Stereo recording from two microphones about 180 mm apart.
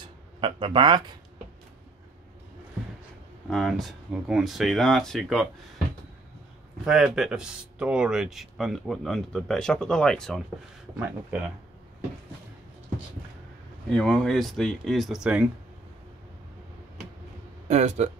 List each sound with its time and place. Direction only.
0.4 s speech: 30° right (ahead or behind)
3.4 s speech: centre (ahead or behind)
6.9 s speech: 5° right (ahead or behind)
11.0 s speech: 10° right (ahead or behind)
13.9 s speech: 5° left (ahead or behind)
17.6 s speech: 40° right (ahead or behind)